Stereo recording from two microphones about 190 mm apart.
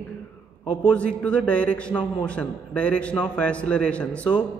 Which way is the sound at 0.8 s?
5° left (ahead or behind).